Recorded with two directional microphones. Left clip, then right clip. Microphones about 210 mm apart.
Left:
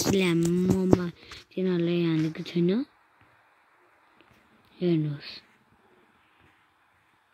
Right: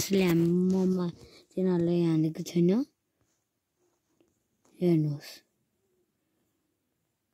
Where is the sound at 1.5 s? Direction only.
5° left (ahead or behind).